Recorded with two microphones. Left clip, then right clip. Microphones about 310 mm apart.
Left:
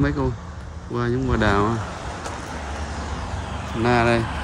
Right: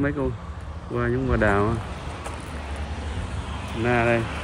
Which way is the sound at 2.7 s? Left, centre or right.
Left.